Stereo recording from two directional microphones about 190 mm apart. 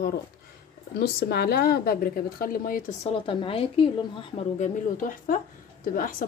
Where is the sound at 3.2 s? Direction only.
30° left (ahead or behind).